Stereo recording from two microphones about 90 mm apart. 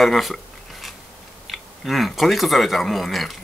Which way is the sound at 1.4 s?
Centre (ahead or behind).